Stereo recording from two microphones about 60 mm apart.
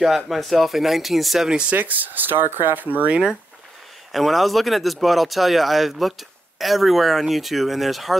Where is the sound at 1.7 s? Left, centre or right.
Right.